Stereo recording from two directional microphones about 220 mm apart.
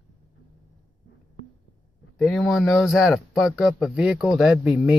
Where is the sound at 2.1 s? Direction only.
Centre (ahead or behind).